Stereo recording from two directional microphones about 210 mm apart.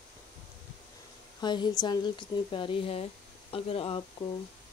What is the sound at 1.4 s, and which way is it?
Speech, 20° left (ahead or behind).